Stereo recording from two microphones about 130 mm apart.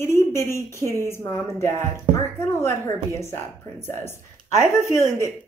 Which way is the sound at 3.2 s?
20° left (ahead or behind).